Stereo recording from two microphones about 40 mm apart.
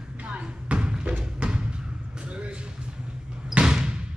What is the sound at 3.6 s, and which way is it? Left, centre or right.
Basketball bounce, centre.